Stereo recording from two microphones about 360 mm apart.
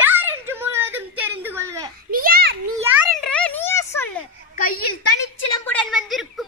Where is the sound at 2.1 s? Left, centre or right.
Right.